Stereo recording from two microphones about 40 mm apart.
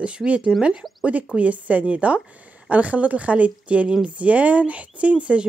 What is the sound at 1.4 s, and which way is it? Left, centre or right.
A woman's voice, right.